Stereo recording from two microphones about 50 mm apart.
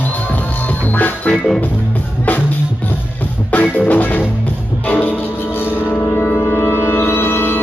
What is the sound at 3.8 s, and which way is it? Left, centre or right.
Music, left.